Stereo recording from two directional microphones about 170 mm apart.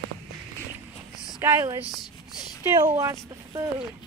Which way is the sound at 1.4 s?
15° right (ahead or behind).